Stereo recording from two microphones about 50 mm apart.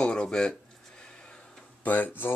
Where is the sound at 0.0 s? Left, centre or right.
Centre.